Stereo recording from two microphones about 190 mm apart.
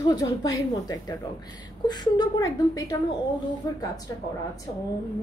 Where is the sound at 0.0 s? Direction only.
20° left (ahead or behind).